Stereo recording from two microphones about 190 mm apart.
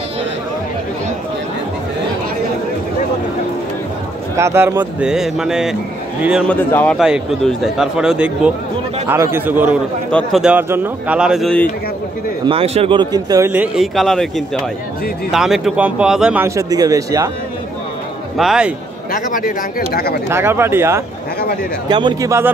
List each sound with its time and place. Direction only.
4.4 s speech: 15° right (ahead or behind)
6.5 s speech: 10° left (ahead or behind)
7.0 s speech: centre (ahead or behind)
12.4 s speech: 30° right (ahead or behind)
13.5 s speech: 5° right (ahead or behind)
18.4 s speech: 5° right (ahead or behind)
19.1 s speech: 45° left (ahead or behind)
20.2 s speech: 10° right (ahead or behind)
21.8 s speech: 25° right (ahead or behind)